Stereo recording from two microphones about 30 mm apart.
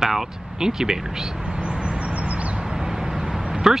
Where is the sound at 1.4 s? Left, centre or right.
Right.